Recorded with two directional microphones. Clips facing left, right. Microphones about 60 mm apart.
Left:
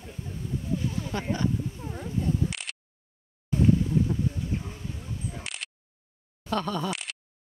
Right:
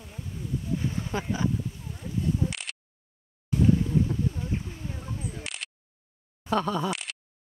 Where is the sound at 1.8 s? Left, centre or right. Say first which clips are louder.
Left 4 dB; left.